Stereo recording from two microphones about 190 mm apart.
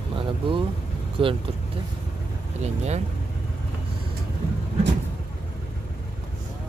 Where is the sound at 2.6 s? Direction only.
35° right (ahead or behind).